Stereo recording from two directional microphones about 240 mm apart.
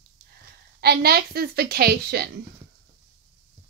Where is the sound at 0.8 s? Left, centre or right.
Right.